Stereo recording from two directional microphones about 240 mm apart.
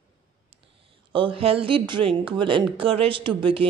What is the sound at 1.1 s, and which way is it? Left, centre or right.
Speech, right.